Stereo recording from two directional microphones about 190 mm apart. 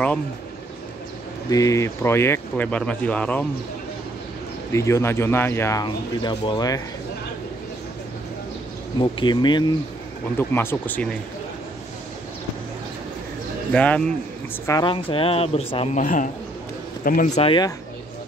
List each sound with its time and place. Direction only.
1.5 s speech: 15° left (ahead or behind)
4.7 s speech: 15° left (ahead or behind)
9.0 s speech: 25° left (ahead or behind)
10.3 s speech: 10° left (ahead or behind)
13.7 s speech: 5° left (ahead or behind)
14.7 s speech: 25° left (ahead or behind); by 17.3 s 45° left (ahead or behind)
17.4 s speech: 25° left (ahead or behind)